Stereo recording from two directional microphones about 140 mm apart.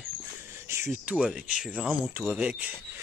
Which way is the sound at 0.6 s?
20° right (ahead or behind).